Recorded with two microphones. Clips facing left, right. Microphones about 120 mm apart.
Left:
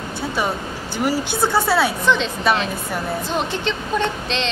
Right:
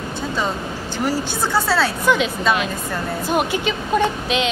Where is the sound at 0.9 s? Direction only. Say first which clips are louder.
Left 1 dB; 15° left (ahead or behind).